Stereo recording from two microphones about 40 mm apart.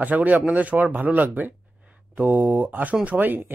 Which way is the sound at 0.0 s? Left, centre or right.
Right.